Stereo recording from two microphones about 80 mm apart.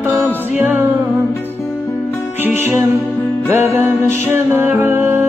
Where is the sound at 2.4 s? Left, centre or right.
Right.